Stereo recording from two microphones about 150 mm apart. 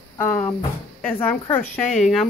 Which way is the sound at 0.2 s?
15° left (ahead or behind).